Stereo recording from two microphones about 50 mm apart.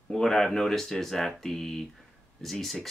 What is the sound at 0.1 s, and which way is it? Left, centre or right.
Speech, centre.